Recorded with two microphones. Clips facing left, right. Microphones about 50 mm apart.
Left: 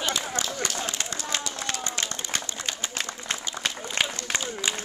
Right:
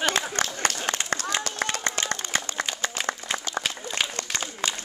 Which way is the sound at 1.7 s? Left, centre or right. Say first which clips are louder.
Right 3 dB; right.